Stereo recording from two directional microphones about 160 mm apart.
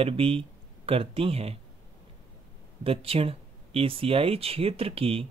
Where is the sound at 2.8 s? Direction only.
35° right (ahead or behind).